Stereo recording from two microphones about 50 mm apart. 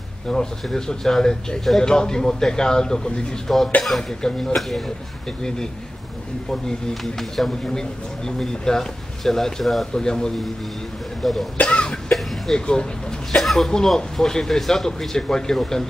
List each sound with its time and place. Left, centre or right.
0.3 s a man's voice: centre
6.5 s speech: centre
9.9 s speech: centre
11.2 s a man's voice: centre
11.6 s cough: left
12.5 s speech: centre
13.3 s speech: centre